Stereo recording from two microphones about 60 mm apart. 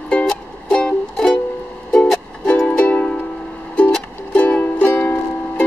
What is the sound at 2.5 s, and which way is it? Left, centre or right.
Music, centre.